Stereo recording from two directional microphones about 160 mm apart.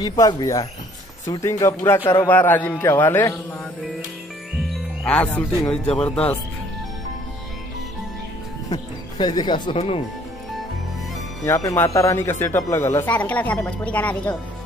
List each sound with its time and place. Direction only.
0.0 s speech: 25° left (ahead or behind)
5.0 s speech: 5° left (ahead or behind)
8.6 s speech: 25° left (ahead or behind)
11.4 s speech: 15° left (ahead or behind)